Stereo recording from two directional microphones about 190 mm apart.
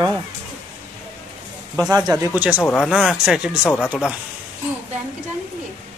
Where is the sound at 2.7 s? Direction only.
5° left (ahead or behind).